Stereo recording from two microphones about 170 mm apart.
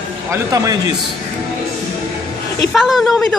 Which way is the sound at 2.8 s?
Centre (ahead or behind).